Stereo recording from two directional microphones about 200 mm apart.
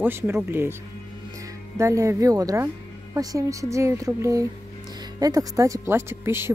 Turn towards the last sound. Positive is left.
turn(degrees=-10)  # may be behind; listen again after turning